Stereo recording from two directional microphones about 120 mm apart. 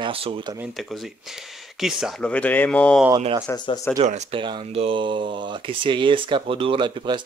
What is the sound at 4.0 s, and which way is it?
Speech, 70° right (ahead or behind).